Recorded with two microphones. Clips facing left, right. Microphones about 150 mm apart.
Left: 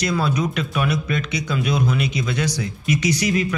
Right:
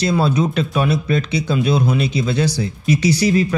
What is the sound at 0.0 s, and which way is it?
Speech, 30° right (ahead or behind).